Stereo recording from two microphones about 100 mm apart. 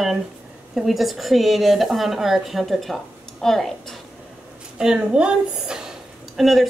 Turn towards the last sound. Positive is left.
turn(degrees=0)  # may be behind; listen again after turning